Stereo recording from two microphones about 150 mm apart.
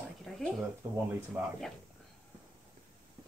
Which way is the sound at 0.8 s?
20° right (ahead or behind).